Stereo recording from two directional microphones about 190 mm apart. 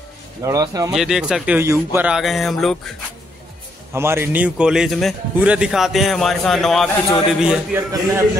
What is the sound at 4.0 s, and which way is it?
Speech, 10° right (ahead or behind).